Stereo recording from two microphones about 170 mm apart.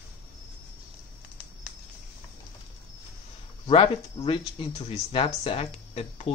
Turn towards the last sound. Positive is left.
turn(degrees=35)  # may be behind; listen again after turning